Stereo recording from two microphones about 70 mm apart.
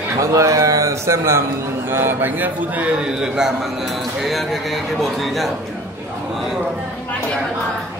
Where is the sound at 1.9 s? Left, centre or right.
Right.